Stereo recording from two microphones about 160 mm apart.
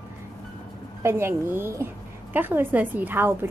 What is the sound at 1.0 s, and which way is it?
A woman's voice, 15° right (ahead or behind).